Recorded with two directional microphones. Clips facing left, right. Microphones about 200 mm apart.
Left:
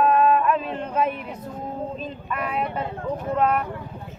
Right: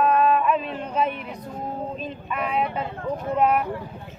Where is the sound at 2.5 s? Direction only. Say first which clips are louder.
Right 2 dB; centre (ahead or behind).